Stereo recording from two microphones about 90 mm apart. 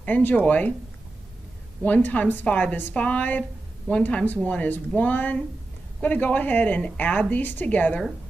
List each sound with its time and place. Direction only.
0.0 s a woman's voice: 15° left (ahead or behind)
1.8 s a woman's voice: 15° left (ahead or behind)